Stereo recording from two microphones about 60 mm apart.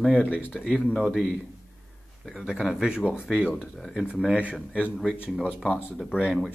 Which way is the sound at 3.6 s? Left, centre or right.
Centre.